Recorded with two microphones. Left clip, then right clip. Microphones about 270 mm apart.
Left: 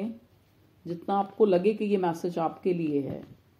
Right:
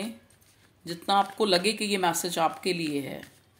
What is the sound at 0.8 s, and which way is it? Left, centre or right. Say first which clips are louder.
Speech: right 4 dB; right.